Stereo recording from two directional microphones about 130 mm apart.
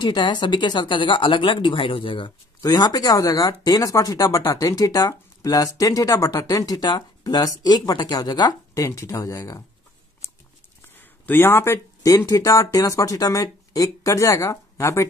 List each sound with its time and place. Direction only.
0.0 s speech: 35° left (ahead or behind)
10.8 s speech: 15° left (ahead or behind)